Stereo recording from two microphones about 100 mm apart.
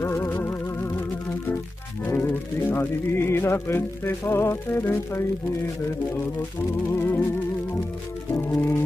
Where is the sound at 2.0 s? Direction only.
20° left (ahead or behind).